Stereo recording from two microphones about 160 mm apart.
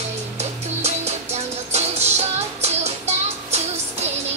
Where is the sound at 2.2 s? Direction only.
40° right (ahead or behind).